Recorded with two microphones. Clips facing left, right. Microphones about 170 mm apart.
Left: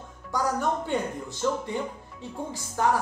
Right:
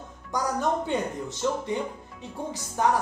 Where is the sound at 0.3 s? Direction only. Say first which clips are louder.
Even; 20° right (ahead or behind).